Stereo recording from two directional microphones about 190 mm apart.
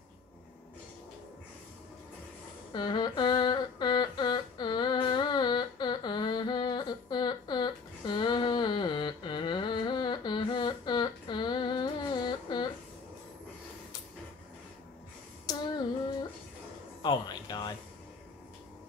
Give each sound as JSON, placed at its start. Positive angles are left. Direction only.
{"t": 2.7, "sound": "humming", "side_deg": 20}
{"t": 15.4, "sound": "child singing", "side_deg": 20}
{"t": 17.0, "sound": "music", "side_deg": 20}